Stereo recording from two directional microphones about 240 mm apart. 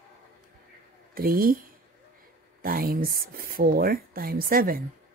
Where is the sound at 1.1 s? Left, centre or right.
Right.